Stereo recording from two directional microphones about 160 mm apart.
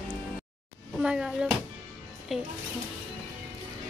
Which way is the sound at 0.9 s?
5° right (ahead or behind).